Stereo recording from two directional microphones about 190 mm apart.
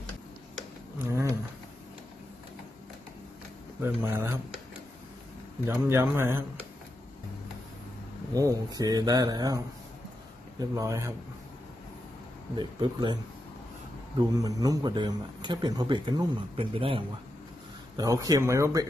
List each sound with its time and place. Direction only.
1.0 s a sound: 15° right (ahead or behind)
3.8 s speech: 15° right (ahead or behind)
5.7 s speech: 15° right (ahead or behind)
8.3 s speech: 20° right (ahead or behind)
10.6 s speech: 15° right (ahead or behind)
12.5 s speech: 25° right (ahead or behind)
14.4 s speech: 20° right (ahead or behind)
17.9 s speech: 20° right (ahead or behind)